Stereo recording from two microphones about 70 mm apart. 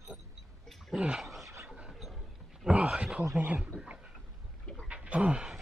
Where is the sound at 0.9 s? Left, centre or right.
Centre.